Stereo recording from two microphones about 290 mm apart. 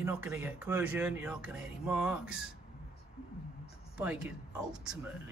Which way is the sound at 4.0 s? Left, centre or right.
Centre.